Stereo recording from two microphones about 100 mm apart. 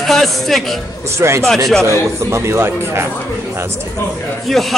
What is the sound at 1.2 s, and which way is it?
Speech, 30° right (ahead or behind).